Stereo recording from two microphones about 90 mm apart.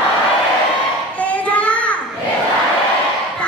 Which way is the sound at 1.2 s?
15° left (ahead or behind).